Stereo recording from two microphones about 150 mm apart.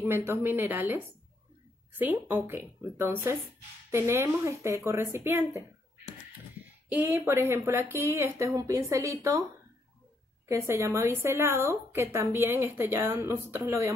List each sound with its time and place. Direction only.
0.0 s a woman's voice: 15° right (ahead or behind)
6.9 s a woman's voice: 10° right (ahead or behind)
10.5 s a woman's voice: 20° right (ahead or behind)